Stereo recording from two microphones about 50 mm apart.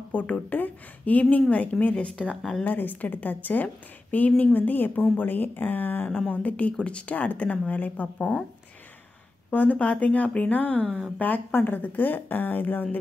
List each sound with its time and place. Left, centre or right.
0.1 s a woman's voice: left
6.0 s speech: left
8.2 s speech: centre
9.5 s a woman's voice: left